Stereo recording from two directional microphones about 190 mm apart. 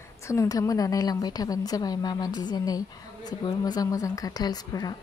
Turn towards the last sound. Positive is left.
turn(degrees=20)  # may be behind; listen again after turning